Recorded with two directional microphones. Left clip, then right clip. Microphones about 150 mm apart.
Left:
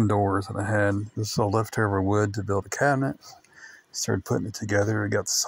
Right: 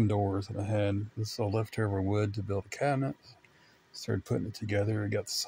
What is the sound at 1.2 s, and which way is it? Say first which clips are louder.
Speech: left 9 dB; 25° left (ahead or behind).